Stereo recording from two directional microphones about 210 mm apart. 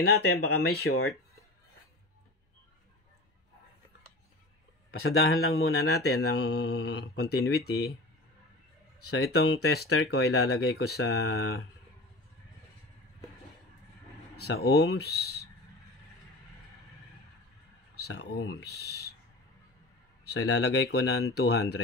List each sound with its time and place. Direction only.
0.0 s speech: 50° left (ahead or behind)
4.9 s a man's voice: 75° left (ahead or behind)
5.9 s speech: 50° left (ahead or behind)
9.3 s speech: 50° left (ahead or behind)
14.3 s speech: 50° left (ahead or behind)
18.0 s speech: 50° left (ahead or behind)
20.4 s speech: 55° left (ahead or behind)